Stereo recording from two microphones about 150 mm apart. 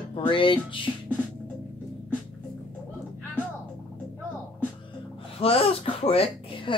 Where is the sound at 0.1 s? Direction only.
35° left (ahead or behind).